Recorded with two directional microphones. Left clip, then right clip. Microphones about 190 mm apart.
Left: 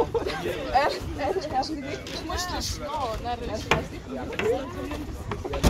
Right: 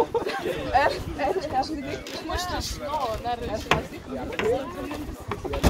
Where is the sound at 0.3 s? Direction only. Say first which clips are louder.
Right 1 dB; 10° right (ahead or behind).